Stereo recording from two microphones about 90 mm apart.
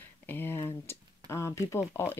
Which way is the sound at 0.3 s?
25° left (ahead or behind).